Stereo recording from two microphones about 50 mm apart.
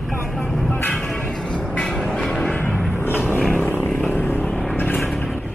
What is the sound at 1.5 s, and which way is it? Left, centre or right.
Vehicle, left.